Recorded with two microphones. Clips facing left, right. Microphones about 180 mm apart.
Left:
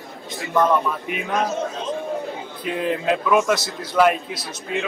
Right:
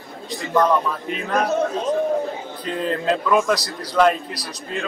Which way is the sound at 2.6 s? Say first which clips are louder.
Even; 5° left (ahead or behind).